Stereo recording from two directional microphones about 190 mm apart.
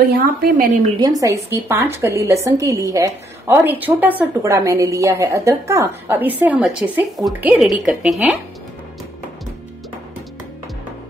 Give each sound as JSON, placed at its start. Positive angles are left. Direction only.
{"t": 0.2, "sound": "a woman's voice", "side_deg": -50}
{"t": 0.9, "sound": "a woman's voice", "side_deg": -20}